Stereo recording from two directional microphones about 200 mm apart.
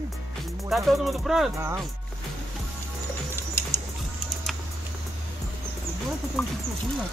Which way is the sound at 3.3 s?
10° left (ahead or behind).